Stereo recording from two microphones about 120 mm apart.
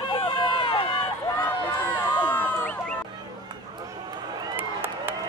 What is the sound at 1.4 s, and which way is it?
Run, 15° left (ahead or behind).